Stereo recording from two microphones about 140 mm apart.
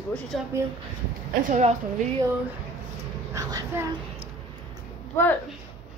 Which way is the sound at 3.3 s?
25° right (ahead or behind).